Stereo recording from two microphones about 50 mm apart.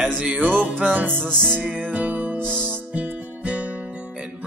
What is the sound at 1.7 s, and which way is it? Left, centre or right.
Music, right.